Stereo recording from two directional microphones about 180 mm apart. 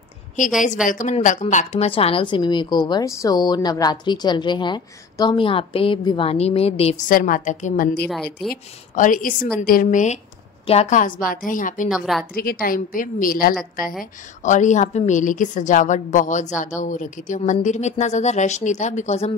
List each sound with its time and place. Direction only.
0.8 s a woman's voice: 45° left (ahead or behind)
7.1 s a woman's voice: 50° left (ahead or behind)
8.1 s a woman's voice: centre (ahead or behind)
8.9 s a woman's voice: 45° left (ahead or behind)
11.9 s a woman's voice: centre (ahead or behind)
12.4 s a woman's voice: 55° left (ahead or behind); by 19.3 s 35° left (ahead or behind)